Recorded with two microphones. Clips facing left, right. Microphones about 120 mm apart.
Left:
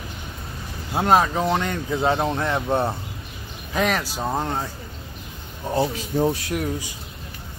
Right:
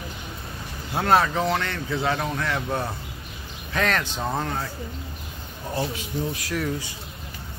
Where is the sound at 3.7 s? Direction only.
10° left (ahead or behind).